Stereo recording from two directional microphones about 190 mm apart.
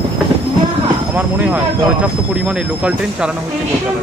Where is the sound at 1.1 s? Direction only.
10° right (ahead or behind).